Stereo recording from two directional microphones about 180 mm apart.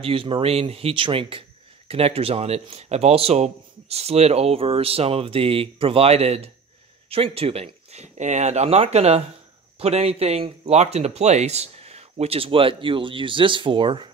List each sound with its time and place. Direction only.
0.0 s speech: 30° right (ahead or behind)